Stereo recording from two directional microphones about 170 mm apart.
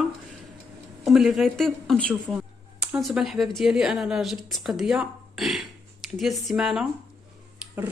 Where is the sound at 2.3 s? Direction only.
5° right (ahead or behind).